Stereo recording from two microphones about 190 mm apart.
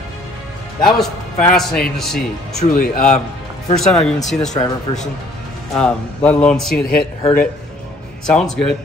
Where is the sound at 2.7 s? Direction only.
45° left (ahead or behind).